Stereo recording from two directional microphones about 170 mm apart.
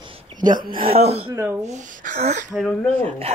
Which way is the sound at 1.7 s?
45° right (ahead or behind).